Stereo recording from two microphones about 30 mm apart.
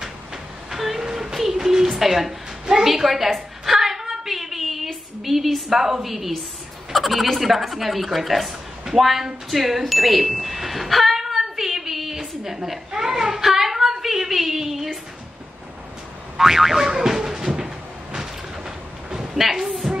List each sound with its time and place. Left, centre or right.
0.7 s vehicle: centre
1.0 s a sound: centre
1.9 s a woman's voice: centre
3.3 s a sound: centre
5.2 s a woman's voice: centre
11.1 s a sound: centre
16.3 s a woman's voice: centre
16.9 s music: centre
17.6 s cupboard open or close: centre
19.3 s a woman's voice: centre